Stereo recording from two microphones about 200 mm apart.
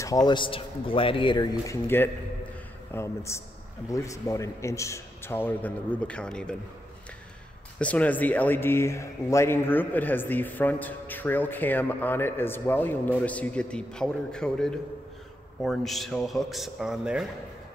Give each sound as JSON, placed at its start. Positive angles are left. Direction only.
{"t": 0.0, "sound": "speech", "side_deg": 20}
{"t": 7.8, "sound": "a man's voice", "side_deg": 5}